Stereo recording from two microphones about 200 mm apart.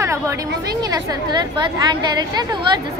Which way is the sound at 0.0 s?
15° right (ahead or behind).